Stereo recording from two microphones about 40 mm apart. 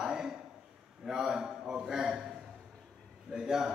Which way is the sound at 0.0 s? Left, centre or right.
Centre.